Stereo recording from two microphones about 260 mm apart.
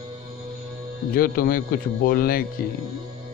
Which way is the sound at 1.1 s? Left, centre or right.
Left.